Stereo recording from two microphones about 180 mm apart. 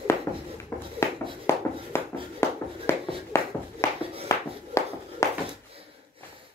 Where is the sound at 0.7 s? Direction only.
15° left (ahead or behind).